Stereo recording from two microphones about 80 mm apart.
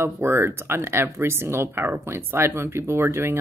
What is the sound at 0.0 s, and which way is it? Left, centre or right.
Speech, right.